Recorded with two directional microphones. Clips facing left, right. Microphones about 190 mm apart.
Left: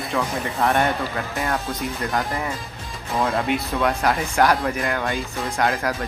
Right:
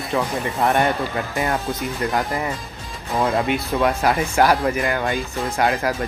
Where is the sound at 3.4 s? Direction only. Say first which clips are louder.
Right 2 dB; centre (ahead or behind).